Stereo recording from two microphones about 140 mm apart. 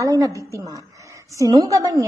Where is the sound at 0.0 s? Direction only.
25° right (ahead or behind).